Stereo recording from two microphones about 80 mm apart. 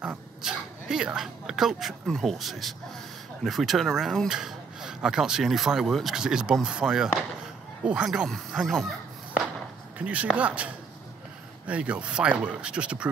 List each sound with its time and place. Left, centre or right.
0.0 s speech: centre
9.9 s speech: centre